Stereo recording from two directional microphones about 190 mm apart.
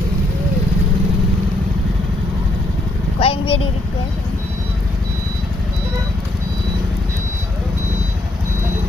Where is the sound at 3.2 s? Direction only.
30° left (ahead or behind).